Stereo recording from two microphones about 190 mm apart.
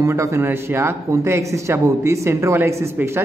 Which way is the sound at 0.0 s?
15° right (ahead or behind).